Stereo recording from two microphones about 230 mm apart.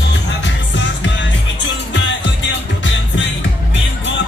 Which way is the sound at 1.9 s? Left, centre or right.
Left.